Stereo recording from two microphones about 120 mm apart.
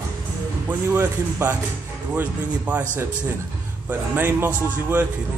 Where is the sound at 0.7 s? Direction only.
15° right (ahead or behind).